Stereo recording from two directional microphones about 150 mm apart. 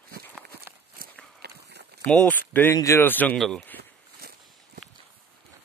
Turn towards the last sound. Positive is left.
turn(degrees=-90)